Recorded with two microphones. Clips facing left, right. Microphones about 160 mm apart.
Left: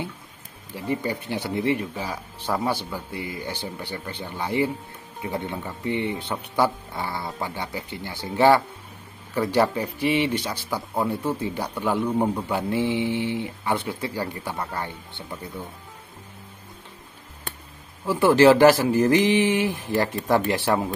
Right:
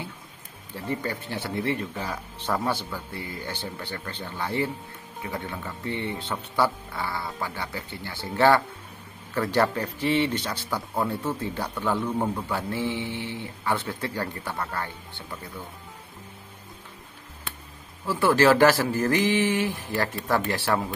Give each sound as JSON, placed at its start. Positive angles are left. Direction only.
{"t": 0.7, "sound": "speech", "side_deg": 15}
{"t": 18.0, "sound": "speech", "side_deg": 15}